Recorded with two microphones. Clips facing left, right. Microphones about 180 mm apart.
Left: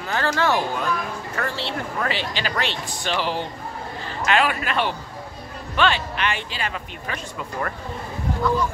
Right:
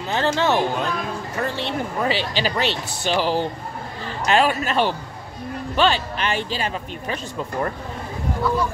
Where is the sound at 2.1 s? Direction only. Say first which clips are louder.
Right 4 dB; 40° right (ahead or behind).